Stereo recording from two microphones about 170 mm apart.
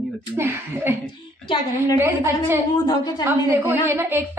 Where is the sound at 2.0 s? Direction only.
15° right (ahead or behind).